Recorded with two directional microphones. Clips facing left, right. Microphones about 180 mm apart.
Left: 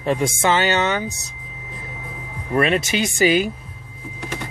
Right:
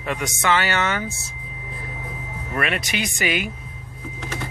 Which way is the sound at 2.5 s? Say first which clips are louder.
Left 7 dB; 25° left (ahead or behind).